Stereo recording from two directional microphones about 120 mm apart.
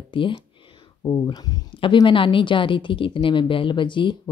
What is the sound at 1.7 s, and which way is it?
A woman's voice, 45° left (ahead or behind).